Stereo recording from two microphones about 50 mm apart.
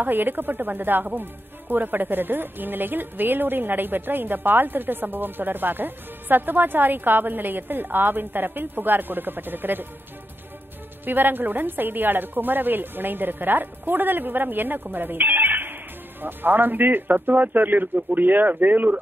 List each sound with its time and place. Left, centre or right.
0.0 s speech: right
11.1 s speech: right